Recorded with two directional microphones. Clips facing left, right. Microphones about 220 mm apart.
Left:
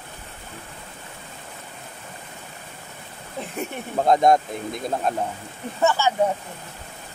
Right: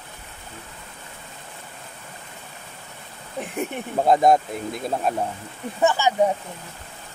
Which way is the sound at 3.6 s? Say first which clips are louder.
Right 1 dB; 5° right (ahead or behind).